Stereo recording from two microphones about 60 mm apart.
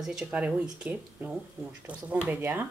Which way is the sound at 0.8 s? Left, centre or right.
Right.